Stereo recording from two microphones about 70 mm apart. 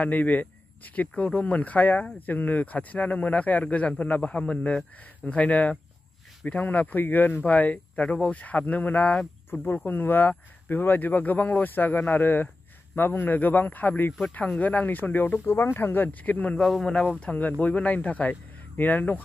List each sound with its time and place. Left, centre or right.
0.0 s speech: left
9.5 s speech: left
16.5 s speech: centre; by 19.2 s left